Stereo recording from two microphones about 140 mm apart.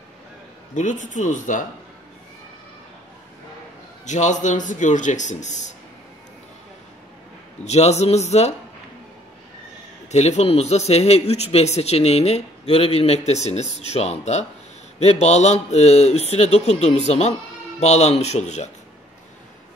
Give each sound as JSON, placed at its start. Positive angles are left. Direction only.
{"t": 0.7, "sound": "a man's voice", "side_deg": 65}
{"t": 4.0, "sound": "a man's voice", "side_deg": 60}
{"t": 7.6, "sound": "speech", "side_deg": 50}
{"t": 10.1, "sound": "speech", "side_deg": 50}